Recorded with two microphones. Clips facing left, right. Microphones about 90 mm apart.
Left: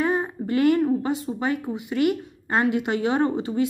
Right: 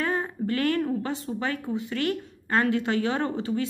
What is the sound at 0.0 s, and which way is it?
Speech, 20° left (ahead or behind).